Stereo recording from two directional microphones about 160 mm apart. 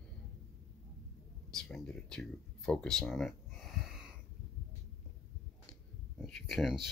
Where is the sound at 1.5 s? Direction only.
5° left (ahead or behind).